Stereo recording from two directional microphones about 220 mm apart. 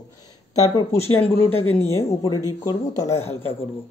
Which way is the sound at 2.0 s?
20° left (ahead or behind).